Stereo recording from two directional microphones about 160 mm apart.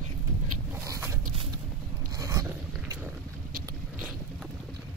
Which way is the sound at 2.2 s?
20° right (ahead or behind).